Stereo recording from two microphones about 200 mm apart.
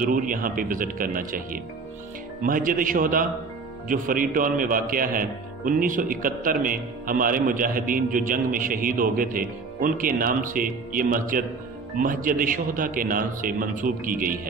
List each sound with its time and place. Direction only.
0.0 s a man's voice: 45° right (ahead or behind)